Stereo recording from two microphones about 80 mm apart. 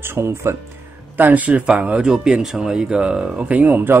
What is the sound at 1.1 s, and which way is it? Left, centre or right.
Speech, right.